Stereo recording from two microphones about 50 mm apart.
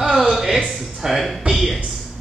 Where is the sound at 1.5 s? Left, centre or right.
Right.